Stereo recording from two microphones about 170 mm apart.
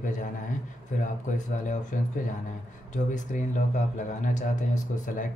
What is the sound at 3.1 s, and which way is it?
Speech, 50° left (ahead or behind).